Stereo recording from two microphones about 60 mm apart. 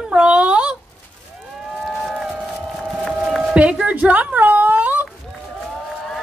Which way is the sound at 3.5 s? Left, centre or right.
Centre.